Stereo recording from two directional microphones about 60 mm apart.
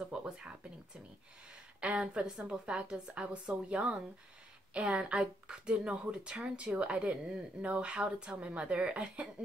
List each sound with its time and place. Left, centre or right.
0.1 s a woman's voice: centre
1.8 s a woman's voice: centre